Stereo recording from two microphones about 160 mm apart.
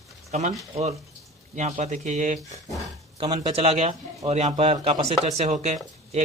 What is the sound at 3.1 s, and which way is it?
Speech, 35° right (ahead or behind).